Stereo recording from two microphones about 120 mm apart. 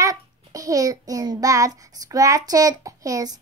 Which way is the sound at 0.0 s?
30° right (ahead or behind).